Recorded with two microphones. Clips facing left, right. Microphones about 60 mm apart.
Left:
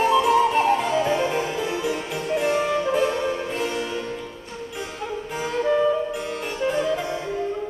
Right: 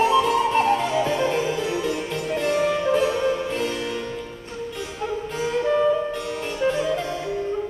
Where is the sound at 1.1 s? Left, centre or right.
Centre.